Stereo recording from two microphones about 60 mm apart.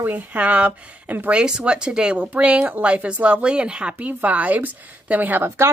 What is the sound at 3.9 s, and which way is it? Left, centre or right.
Speech, right.